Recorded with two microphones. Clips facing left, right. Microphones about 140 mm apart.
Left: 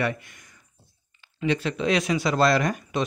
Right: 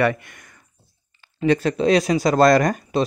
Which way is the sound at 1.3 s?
40° right (ahead or behind).